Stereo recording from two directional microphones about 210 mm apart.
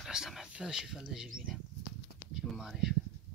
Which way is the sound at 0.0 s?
Centre (ahead or behind).